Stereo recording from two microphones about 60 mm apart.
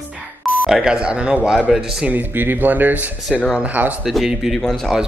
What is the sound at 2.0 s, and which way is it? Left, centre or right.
A woman's voice, right.